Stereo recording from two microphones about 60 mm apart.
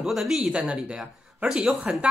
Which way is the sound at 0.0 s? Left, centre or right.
Centre.